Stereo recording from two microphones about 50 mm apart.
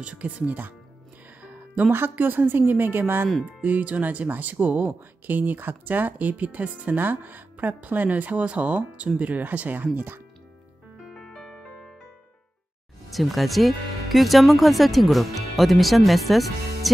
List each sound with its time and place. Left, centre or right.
0.0 s speech: right
1.4 s music: right
1.9 s speech: right
3.4 s speech: right
9.9 s speech: right
11.1 s music: centre
13.1 s speech: centre